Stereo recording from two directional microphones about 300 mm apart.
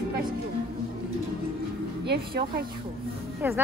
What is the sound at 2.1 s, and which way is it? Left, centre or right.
Speech, right.